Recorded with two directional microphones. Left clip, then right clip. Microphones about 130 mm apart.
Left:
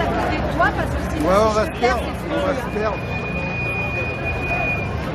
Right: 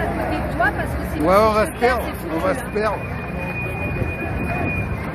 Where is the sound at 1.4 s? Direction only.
90° right.